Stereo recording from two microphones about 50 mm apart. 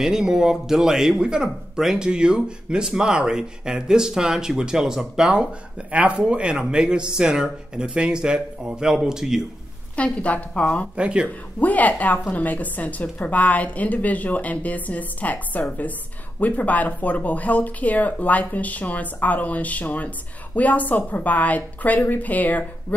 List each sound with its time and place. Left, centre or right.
0.0 s speech: centre
5.9 s speech: right; by 9.4 s centre
9.9 s a woman's voice: left
11.0 s speech: right
11.2 s a woman's voice: left